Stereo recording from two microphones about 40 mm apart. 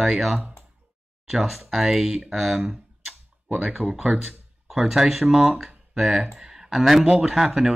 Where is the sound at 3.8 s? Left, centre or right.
Centre.